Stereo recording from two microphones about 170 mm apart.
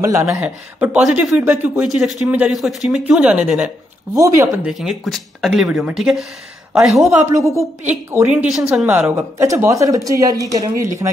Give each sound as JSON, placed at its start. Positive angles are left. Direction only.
{"t": 0.0, "sound": "speech", "side_deg": -20}
{"t": 0.4, "sound": "a woman's voice", "side_deg": -10}
{"t": 4.1, "sound": "speech", "side_deg": -20}
{"t": 4.6, "sound": "speech", "side_deg": 0}
{"t": 7.2, "sound": "a woman's voice", "side_deg": -15}